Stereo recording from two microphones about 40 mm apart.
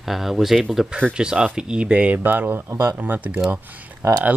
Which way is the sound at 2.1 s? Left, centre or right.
Right.